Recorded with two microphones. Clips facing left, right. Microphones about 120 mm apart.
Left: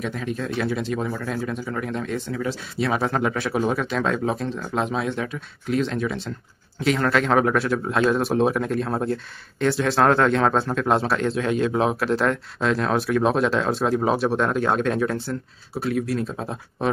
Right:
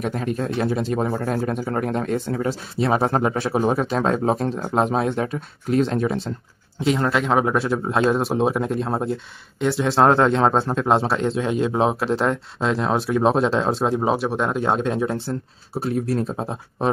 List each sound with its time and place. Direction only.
0.0 s speech: 45° right (ahead or behind)
6.8 s speech: 20° right (ahead or behind)